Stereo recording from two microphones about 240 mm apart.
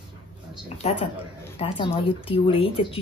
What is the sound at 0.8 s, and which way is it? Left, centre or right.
Speech, left.